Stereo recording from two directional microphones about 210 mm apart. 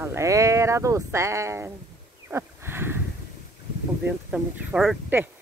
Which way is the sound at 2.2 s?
10° right (ahead or behind).